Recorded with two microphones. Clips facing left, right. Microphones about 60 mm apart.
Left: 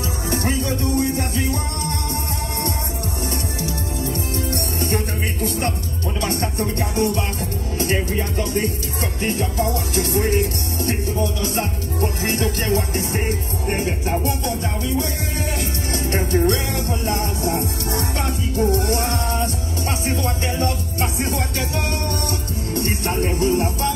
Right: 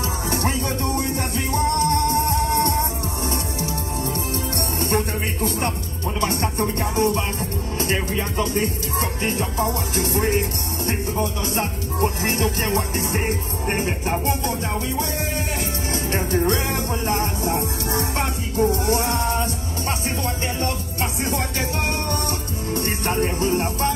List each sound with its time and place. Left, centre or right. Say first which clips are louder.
1.5 s music: right 6 dB; right
6.4 s music: even; right
9.2 s music: left 3 dB; right
12.0 s music: right 1 dB; right
16.3 s music: left 1 dB; right
18.1 s music: even; right
18.7 s music: left 1 dB; left
21.3 s music: even; right